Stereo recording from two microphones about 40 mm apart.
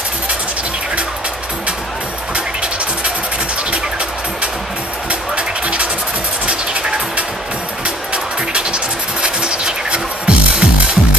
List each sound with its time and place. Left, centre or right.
5.3 s music: right